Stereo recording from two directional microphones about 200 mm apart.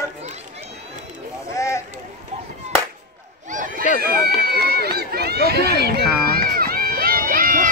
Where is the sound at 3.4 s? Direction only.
40° right (ahead or behind).